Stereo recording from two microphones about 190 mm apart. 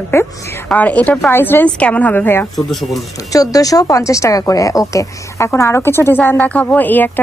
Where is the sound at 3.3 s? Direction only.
20° left (ahead or behind).